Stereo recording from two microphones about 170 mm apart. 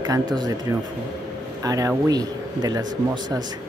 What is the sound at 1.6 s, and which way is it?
Speech, 20° right (ahead or behind).